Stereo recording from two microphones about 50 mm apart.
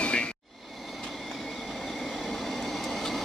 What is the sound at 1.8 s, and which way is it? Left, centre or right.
Train, centre.